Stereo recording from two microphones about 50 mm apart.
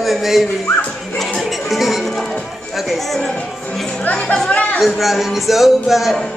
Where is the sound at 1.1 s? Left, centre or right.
Centre.